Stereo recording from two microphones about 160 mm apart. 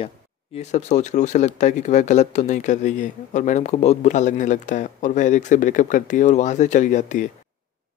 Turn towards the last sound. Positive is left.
turn(degrees=50)  # may be behind; listen again after turning